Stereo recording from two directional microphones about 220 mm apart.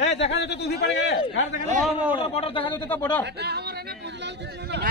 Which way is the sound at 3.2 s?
50° right (ahead or behind).